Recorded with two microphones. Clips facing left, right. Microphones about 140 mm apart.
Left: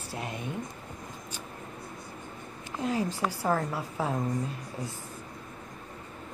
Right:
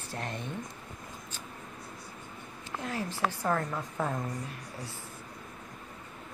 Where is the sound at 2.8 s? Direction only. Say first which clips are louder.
Left 4 dB; 15° left (ahead or behind).